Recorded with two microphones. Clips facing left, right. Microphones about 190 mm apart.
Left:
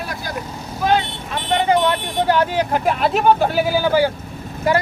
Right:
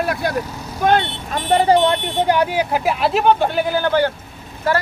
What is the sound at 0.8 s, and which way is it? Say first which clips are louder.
Speech: right 2 dB; 50° right (ahead or behind).